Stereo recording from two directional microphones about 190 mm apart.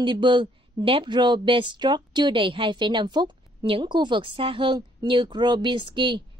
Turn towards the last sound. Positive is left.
turn(degrees=-25)  # may be behind; listen again after turning